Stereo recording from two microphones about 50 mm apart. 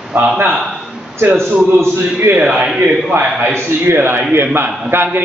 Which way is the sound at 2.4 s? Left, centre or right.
Right.